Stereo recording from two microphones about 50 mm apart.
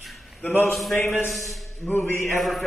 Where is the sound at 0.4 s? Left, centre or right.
Left.